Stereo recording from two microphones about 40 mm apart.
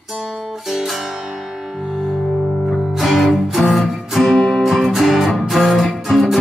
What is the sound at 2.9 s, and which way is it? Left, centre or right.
Music, centre.